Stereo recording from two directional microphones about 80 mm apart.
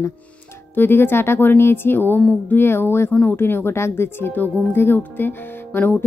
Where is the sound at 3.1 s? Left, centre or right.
Centre.